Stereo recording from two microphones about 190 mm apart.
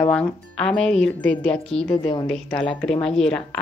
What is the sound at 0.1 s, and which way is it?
Speech, 5° left (ahead or behind).